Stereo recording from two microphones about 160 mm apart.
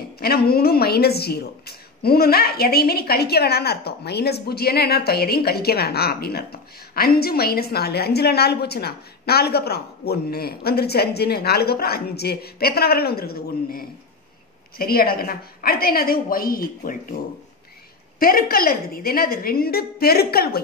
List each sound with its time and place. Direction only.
0.2 s a woman's voice: 75° left (ahead or behind)
18.2 s a woman's voice: 65° left (ahead or behind)